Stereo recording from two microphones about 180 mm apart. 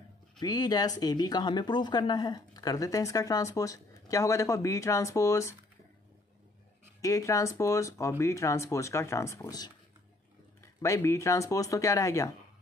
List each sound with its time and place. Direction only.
0.4 s speech: 20° left (ahead or behind)
7.0 s speech: 20° left (ahead or behind)